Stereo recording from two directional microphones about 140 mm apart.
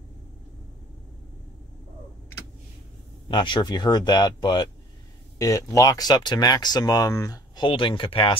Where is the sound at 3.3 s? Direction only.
35° left (ahead or behind).